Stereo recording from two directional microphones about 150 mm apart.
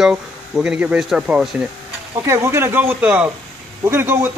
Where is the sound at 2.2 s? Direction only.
20° right (ahead or behind).